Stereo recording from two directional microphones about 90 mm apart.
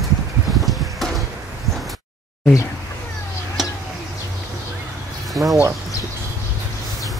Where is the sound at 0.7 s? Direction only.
Centre (ahead or behind).